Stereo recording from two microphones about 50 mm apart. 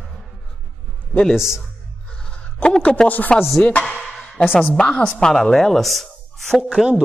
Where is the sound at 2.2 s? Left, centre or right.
Left.